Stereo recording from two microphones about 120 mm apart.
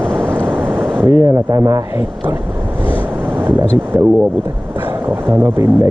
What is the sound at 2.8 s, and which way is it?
Vehicle, 15° right (ahead or behind).